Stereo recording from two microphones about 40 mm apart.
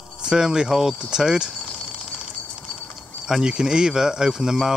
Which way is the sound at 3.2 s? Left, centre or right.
Centre.